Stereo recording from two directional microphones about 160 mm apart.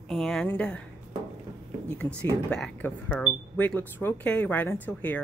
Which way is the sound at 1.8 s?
5° left (ahead or behind).